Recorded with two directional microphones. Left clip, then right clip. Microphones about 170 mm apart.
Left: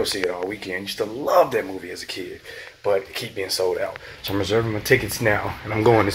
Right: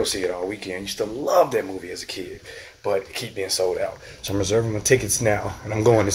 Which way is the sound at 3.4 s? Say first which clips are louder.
Even; 20° right (ahead or behind).